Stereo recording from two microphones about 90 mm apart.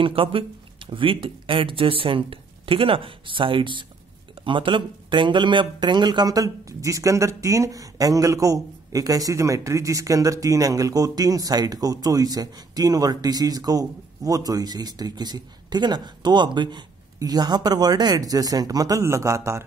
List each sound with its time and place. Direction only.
0.0 s speech: 85° right; by 19.6 s 30° right (ahead or behind)